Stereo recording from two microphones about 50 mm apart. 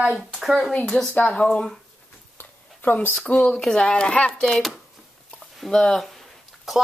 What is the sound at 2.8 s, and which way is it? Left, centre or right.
Speech, left.